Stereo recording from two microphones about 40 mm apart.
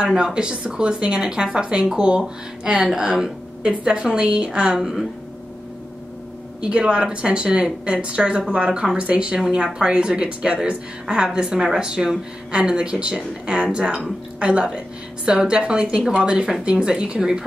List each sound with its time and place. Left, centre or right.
0.0 s speech: right
3.6 s a woman's voice: right
6.6 s speech: right